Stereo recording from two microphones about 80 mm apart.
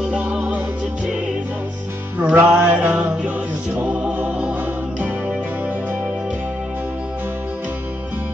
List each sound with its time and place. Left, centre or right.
0.1 s music: centre
2.1 s music: centre